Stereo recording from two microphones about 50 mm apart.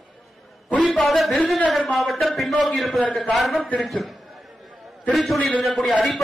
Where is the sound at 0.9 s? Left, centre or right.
Centre.